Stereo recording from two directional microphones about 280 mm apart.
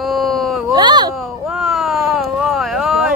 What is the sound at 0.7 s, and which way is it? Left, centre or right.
Speech, centre.